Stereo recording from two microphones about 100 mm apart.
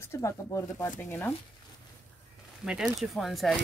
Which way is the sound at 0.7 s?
15° left (ahead or behind).